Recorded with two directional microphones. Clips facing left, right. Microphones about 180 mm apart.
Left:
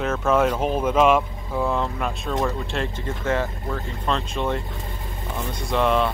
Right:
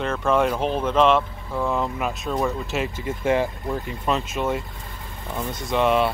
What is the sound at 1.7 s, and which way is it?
Speech, centre (ahead or behind).